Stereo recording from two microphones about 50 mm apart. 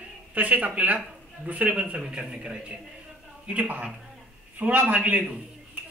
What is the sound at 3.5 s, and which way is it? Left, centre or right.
A man's voice, right.